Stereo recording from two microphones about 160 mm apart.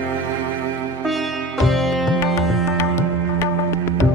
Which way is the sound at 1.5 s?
Centre (ahead or behind).